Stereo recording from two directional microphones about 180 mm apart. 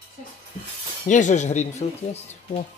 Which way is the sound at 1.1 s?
45° left (ahead or behind).